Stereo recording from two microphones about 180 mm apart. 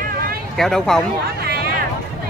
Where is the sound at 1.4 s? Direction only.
60° right (ahead or behind).